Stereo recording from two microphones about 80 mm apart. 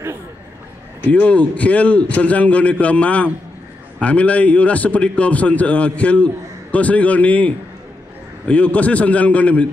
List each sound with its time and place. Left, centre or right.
1.1 s a man's voice: centre